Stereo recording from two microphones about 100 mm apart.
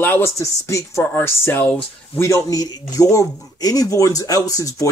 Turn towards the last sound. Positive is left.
turn(degrees=35)  # may be behind; listen again after turning